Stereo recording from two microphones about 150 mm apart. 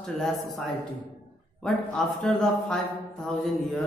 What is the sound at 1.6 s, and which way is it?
A man's voice, centre (ahead or behind).